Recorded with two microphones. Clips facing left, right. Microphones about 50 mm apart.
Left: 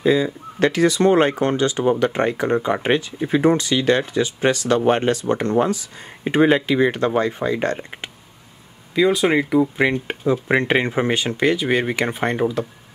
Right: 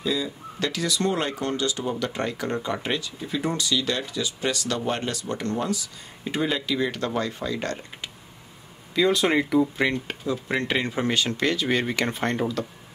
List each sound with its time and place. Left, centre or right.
0.0 s speech: left
8.9 s speech: centre